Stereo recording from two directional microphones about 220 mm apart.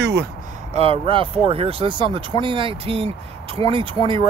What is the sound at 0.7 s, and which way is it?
Speech, 25° right (ahead or behind).